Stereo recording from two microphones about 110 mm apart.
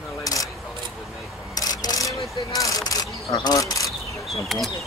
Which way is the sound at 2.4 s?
35° left (ahead or behind).